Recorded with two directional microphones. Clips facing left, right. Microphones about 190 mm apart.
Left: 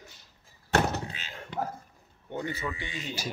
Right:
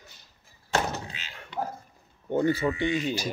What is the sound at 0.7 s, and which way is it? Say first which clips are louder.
Thunk: left 2 dB; 55° left (ahead or behind).